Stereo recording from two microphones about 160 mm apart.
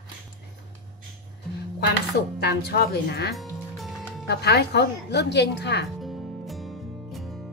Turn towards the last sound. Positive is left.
turn(degrees=0)  # may be behind; listen again after turning